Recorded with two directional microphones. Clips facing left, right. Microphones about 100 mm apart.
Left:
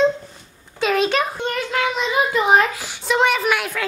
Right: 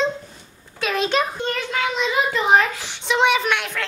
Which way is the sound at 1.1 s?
10° left (ahead or behind).